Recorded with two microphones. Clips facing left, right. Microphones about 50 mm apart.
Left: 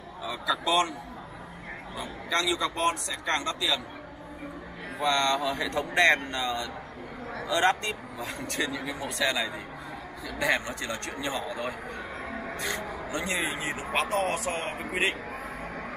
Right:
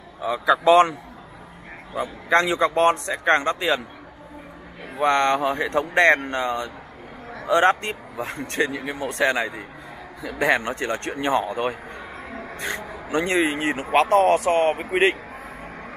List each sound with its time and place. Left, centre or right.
0.2 s a man's voice: right
2.0 s a man's voice: right
4.9 s a man's voice: right
12.3 s music: centre
12.5 s speech: right
13.1 s speech: right